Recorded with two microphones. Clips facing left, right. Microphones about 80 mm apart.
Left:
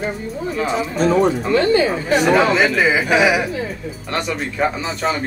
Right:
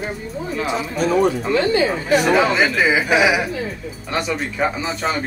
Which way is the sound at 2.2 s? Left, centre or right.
Centre.